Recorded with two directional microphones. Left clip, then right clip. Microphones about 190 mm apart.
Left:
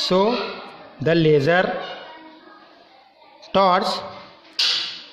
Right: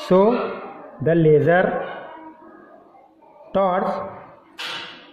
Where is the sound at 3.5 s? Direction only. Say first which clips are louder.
Left 3 dB; 35° left (ahead or behind).